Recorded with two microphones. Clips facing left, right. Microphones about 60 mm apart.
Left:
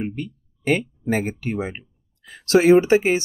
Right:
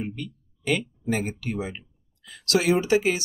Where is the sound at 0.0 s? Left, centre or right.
Left.